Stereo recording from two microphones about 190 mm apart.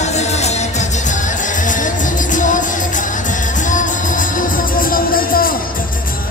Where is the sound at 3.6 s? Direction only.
40° left (ahead or behind).